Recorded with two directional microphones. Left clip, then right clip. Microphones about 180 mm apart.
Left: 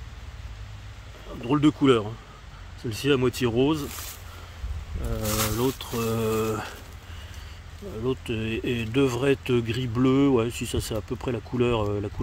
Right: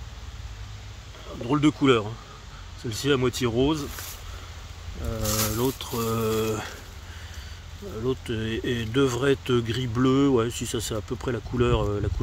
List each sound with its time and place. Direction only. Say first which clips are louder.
1.5 s speech: even; 15° left (ahead or behind)
5.1 s speech: even; 20° left (ahead or behind)
8.0 s speech: even; 10° left (ahead or behind)